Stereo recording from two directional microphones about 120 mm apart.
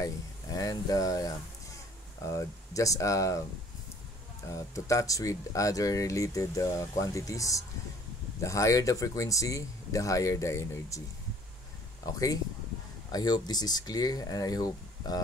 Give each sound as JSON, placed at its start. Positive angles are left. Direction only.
{"t": 0.6, "sound": "speech", "side_deg": 30}
{"t": 4.5, "sound": "speech", "side_deg": 25}
{"t": 12.1, "sound": "speech", "side_deg": 30}